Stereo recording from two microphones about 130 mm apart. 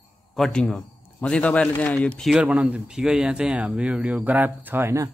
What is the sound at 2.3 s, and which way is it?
Speech, 10° right (ahead or behind).